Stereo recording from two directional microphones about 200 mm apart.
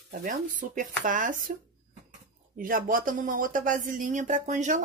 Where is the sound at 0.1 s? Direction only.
45° right (ahead or behind).